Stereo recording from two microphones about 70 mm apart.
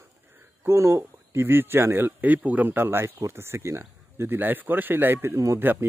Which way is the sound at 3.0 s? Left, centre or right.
Right.